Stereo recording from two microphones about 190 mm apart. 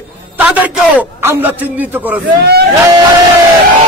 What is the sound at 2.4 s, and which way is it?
Speech, 55° right (ahead or behind).